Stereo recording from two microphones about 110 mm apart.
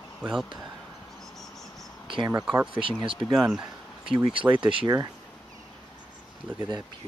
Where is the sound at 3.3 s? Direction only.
5° right (ahead or behind).